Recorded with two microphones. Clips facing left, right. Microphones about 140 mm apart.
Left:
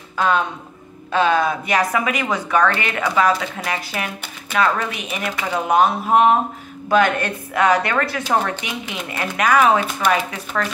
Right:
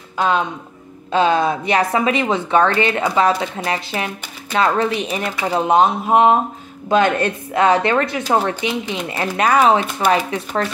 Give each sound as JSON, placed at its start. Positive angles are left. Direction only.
{"t": 0.2, "sound": "a woman's voice", "side_deg": -20}